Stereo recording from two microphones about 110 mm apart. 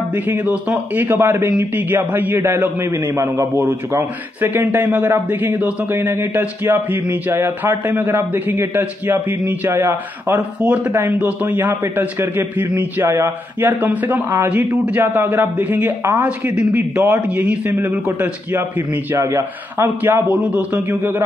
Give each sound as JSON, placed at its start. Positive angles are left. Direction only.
{"t": 0.1, "sound": "a man's voice", "side_deg": -15}